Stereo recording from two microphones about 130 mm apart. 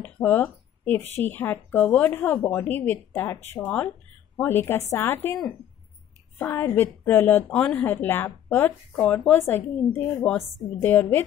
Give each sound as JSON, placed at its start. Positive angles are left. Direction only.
{"t": 0.0, "sound": "a sound", "side_deg": 15}
{"t": 1.2, "sound": "a woman's voice", "side_deg": 15}
{"t": 6.4, "sound": "a woman's voice", "side_deg": 15}